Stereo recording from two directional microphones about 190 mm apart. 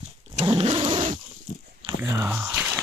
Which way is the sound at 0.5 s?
30° right (ahead or behind).